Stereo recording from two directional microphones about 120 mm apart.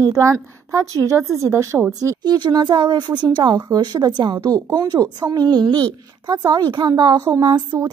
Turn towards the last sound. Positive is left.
turn(degrees=-35)  # may be behind; listen again after turning